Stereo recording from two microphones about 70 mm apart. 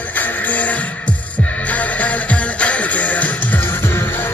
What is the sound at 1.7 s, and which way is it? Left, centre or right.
Music, centre.